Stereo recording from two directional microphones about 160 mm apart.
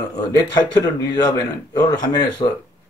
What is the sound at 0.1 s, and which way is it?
Speech, 25° left (ahead or behind).